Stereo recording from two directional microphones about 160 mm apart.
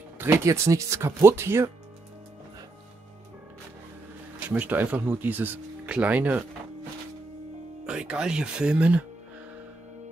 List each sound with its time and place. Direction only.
0.2 s speech: 15° right (ahead or behind)
4.5 s speech: 10° right (ahead or behind)
7.8 s speech: 5° right (ahead or behind)